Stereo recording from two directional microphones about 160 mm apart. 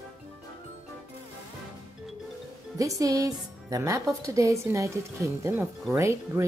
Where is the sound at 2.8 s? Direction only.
20° right (ahead or behind).